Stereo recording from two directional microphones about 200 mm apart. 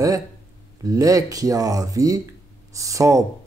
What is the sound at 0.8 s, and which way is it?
Speech, 15° right (ahead or behind).